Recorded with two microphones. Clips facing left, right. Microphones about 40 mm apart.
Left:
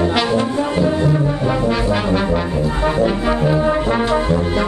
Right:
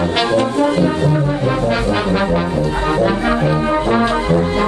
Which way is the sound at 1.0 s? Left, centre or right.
Centre.